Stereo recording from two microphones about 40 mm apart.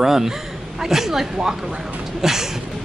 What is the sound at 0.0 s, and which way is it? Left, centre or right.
A woman's voice, centre.